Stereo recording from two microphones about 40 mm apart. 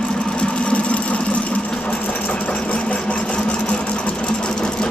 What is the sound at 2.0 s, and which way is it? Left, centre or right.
Engine, left.